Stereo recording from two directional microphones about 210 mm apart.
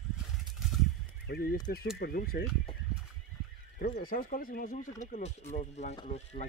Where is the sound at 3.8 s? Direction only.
45° left (ahead or behind); by 6.5 s 30° left (ahead or behind).